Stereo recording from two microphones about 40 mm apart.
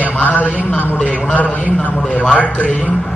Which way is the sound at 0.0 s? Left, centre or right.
Left.